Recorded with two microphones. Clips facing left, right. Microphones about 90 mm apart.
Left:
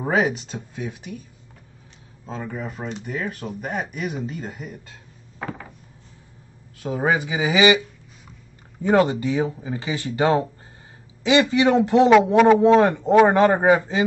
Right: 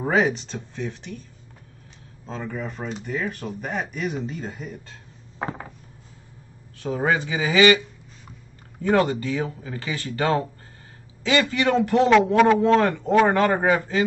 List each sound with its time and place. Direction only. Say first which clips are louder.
0.0 s speech: even; 5° left (ahead or behind)
2.2 s speech: even; 5° left (ahead or behind)
5.4 s a sound: right 2 dB; 20° right (ahead or behind)
6.8 s speech: left 1 dB; 10° left (ahead or behind)
8.8 s speech: left 2 dB; 20° left (ahead or behind)